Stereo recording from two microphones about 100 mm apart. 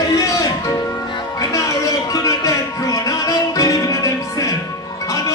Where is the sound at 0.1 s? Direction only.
35° left (ahead or behind).